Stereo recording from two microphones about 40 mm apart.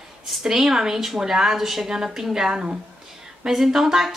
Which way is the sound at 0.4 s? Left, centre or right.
Centre.